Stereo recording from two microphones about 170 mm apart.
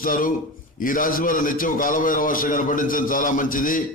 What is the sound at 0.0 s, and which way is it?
A man's voice, 55° left (ahead or behind).